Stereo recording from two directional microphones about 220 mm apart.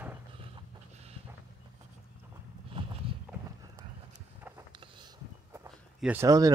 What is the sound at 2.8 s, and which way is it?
Clip-clop, 25° right (ahead or behind).